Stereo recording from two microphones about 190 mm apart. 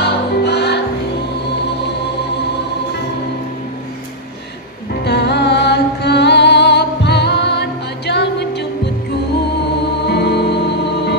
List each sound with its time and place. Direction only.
0.0 s music: 60° left (ahead or behind)
5.0 s music: 60° left (ahead or behind)
10.0 s music: 60° left (ahead or behind)